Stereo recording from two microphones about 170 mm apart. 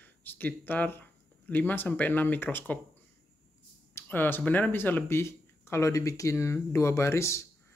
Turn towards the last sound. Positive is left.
turn(degrees=15)  # may be behind; listen again after turning